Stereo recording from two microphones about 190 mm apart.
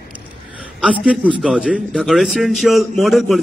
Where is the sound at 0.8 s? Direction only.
5° right (ahead or behind).